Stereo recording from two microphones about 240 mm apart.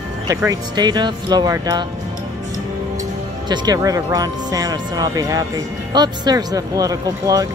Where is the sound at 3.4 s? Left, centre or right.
Centre.